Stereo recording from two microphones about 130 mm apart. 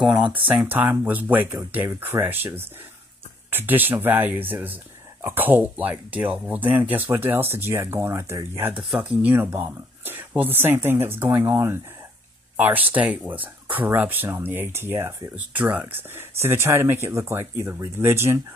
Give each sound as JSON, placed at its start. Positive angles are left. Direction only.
{"t": 0.0, "sound": "speech", "side_deg": -5}